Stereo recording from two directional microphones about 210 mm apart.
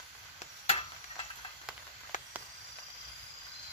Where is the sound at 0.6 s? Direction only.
30° left (ahead or behind).